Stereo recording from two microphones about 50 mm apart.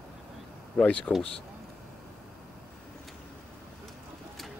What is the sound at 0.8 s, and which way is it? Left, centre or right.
Speech, left.